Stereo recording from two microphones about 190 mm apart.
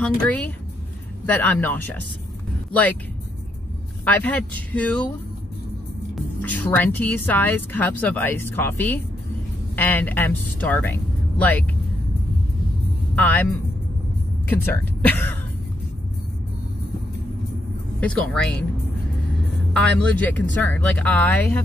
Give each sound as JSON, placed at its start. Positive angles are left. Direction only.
{"t": 0.0, "sound": "speech", "side_deg": 5}
{"t": 4.0, "sound": "speech", "side_deg": 10}
{"t": 6.7, "sound": "speech", "side_deg": 10}
{"t": 13.1, "sound": "speech", "side_deg": 10}
{"t": 14.7, "sound": "speech", "side_deg": 10}
{"t": 18.0, "sound": "speech", "side_deg": 5}
{"t": 19.7, "sound": "speech", "side_deg": 5}